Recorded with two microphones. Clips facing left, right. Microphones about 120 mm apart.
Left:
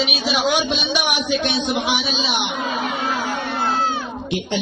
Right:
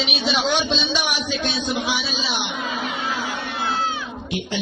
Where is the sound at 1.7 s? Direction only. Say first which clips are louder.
Left 3 dB; 20° left (ahead or behind).